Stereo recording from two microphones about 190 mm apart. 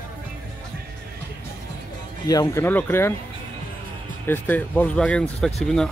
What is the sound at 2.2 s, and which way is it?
Speech, 20° left (ahead or behind).